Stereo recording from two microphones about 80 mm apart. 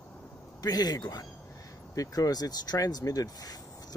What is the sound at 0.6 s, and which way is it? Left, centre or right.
Speech, left.